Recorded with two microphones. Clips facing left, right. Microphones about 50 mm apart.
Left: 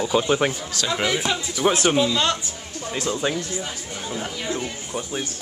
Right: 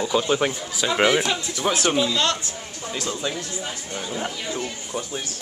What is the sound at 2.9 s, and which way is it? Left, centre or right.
Speech, left.